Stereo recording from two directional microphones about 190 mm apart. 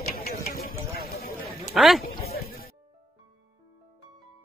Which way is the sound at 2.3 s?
50° left (ahead or behind).